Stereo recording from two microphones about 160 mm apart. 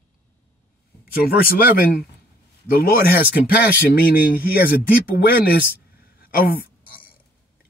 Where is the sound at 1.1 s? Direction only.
70° left (ahead or behind).